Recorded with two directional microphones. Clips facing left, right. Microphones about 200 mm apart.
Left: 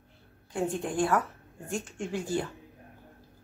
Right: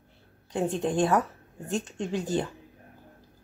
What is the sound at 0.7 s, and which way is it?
Speech, 20° right (ahead or behind).